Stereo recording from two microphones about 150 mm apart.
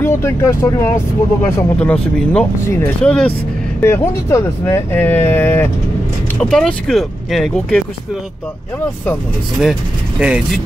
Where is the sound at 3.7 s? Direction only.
15° left (ahead or behind).